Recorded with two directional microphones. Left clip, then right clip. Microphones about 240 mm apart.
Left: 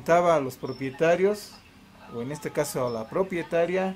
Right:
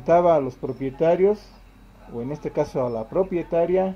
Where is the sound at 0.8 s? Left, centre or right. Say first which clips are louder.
Right 2 dB; right.